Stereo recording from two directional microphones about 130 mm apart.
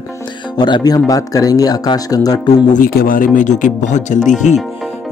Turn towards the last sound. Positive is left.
turn(degrees=70)  # may be behind; listen again after turning